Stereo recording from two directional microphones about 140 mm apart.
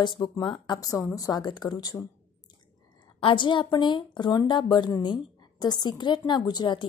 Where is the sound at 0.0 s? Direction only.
30° left (ahead or behind).